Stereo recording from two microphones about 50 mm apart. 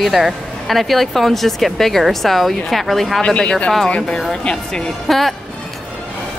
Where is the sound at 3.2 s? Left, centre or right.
Centre.